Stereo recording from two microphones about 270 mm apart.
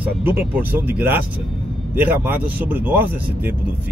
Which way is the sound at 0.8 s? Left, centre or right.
Centre.